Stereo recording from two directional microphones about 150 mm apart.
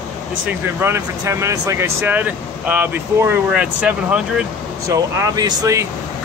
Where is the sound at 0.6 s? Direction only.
15° right (ahead or behind).